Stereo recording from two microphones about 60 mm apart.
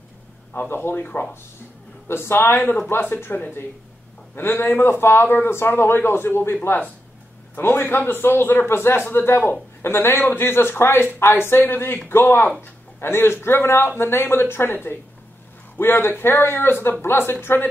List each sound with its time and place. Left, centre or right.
0.5 s speech: left
2.0 s speech: left